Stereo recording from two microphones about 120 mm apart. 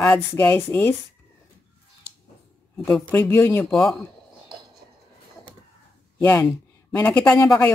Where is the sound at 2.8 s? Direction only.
10° left (ahead or behind).